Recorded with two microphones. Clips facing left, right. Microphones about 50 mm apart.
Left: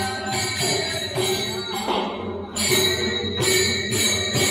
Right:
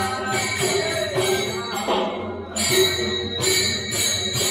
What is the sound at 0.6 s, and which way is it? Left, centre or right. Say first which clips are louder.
Music: right 3 dB; right.